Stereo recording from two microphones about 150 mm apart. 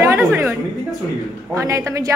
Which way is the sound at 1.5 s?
20° right (ahead or behind).